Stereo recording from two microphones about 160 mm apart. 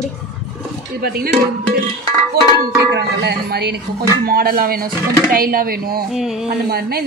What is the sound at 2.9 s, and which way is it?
Speech, 90° right.